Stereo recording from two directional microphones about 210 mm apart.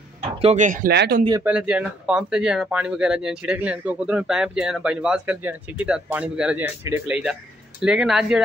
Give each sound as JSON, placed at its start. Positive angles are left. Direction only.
{"t": 0.4, "sound": "speech", "side_deg": -35}
{"t": 1.4, "sound": "speech", "side_deg": -5}